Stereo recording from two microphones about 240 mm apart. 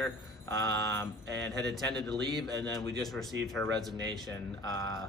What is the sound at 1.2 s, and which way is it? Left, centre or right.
Speech, right.